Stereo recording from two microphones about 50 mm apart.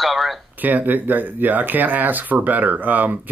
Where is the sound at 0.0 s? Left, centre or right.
Centre.